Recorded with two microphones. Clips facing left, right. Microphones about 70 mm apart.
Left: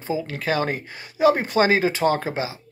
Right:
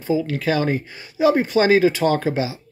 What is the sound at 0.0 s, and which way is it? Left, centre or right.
Speech, left.